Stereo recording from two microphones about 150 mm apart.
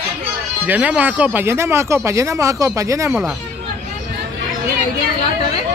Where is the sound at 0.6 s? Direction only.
10° right (ahead or behind).